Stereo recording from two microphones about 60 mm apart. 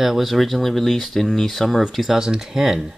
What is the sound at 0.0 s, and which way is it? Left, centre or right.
Speech, centre.